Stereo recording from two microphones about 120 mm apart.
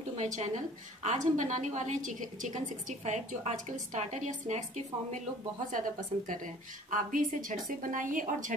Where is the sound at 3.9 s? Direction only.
90° right.